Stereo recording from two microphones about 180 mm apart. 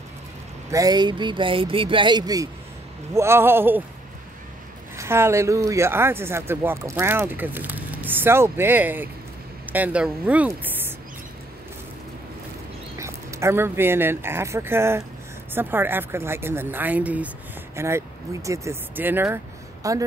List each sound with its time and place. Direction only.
0.7 s speech: 20° right (ahead or behind)
4.9 s speech: 15° right (ahead or behind)
13.0 s speech: 15° right (ahead or behind)